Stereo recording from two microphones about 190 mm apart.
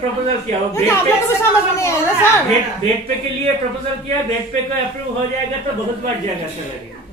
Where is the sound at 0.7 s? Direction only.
15° left (ahead or behind).